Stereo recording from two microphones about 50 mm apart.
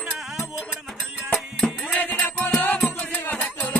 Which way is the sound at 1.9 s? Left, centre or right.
Left.